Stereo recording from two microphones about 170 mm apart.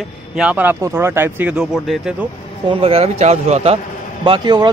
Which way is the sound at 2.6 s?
30° right (ahead or behind).